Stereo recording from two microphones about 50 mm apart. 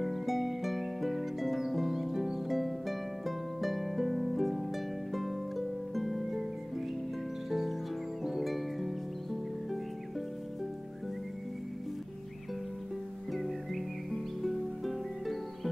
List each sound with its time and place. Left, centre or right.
0.0 s music: centre
5.1 s harp: centre
7.4 s music: centre
14.4 s music: centre